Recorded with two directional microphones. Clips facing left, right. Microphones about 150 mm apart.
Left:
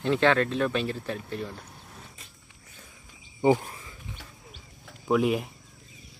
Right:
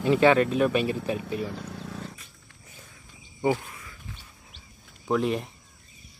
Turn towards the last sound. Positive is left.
turn(degrees=5)  # may be behind; listen again after turning